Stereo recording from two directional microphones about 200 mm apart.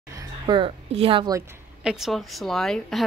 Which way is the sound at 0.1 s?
20° right (ahead or behind).